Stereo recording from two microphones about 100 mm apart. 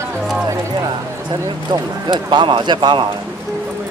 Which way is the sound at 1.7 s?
55° right (ahead or behind).